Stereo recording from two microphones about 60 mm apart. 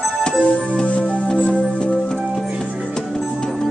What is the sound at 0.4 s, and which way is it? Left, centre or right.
Music, left.